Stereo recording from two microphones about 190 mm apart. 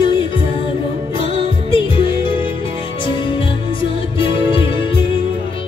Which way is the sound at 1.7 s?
25° left (ahead or behind).